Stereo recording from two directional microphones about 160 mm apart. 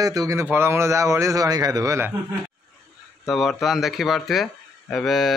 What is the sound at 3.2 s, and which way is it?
Speech, centre (ahead or behind).